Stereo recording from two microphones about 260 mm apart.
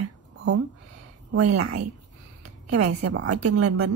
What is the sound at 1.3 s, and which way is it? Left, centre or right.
Speech, right.